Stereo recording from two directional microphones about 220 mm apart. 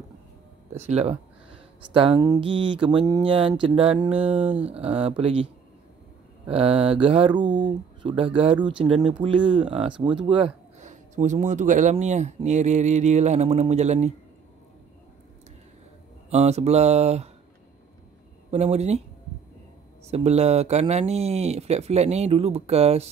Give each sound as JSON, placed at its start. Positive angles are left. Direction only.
{"t": 0.7, "sound": "speech", "side_deg": -30}
{"t": 4.4, "sound": "speech", "side_deg": -5}
{"t": 4.7, "sound": "speech", "side_deg": -25}
{"t": 16.3, "sound": "speech", "side_deg": -30}
{"t": 18.5, "sound": "speech", "side_deg": -30}
{"t": 20.1, "sound": "speech", "side_deg": -30}